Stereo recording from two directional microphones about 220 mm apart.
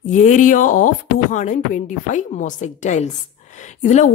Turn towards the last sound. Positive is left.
turn(degrees=30)  # may be behind; listen again after turning